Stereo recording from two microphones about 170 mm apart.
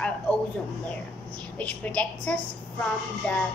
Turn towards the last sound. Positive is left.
turn(degrees=5)  # may be behind; listen again after turning